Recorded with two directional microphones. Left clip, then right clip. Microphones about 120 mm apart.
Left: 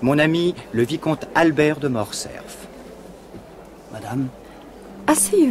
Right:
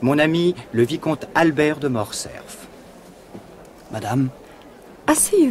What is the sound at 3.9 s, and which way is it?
Speech, 35° right (ahead or behind).